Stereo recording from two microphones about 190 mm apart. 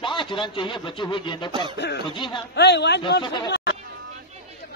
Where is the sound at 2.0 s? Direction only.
25° left (ahead or behind).